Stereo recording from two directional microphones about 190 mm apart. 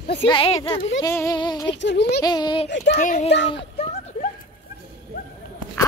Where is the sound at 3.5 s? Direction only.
30° left (ahead or behind).